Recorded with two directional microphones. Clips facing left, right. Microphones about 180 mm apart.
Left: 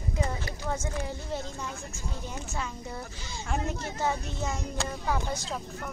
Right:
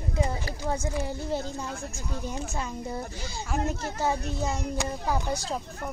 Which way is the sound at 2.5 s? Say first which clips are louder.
Right 4 dB; 35° right (ahead or behind).